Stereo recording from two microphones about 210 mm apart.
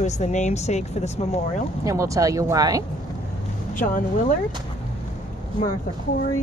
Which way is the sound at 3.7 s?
40° left (ahead or behind).